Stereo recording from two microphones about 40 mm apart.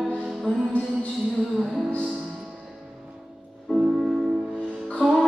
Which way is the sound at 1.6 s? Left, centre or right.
Centre.